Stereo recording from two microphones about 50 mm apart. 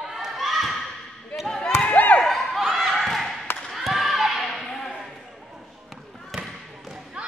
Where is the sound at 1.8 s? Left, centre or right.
Left.